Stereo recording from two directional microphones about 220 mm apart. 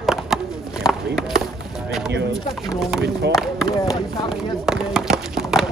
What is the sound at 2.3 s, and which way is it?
Speech, centre (ahead or behind).